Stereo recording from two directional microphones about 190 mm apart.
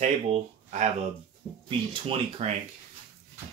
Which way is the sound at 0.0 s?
35° right (ahead or behind).